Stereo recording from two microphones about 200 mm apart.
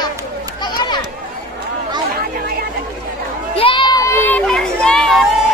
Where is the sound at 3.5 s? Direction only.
25° left (ahead or behind); by 5.3 s centre (ahead or behind).